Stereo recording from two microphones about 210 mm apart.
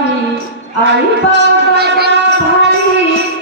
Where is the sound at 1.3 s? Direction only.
50° right (ahead or behind).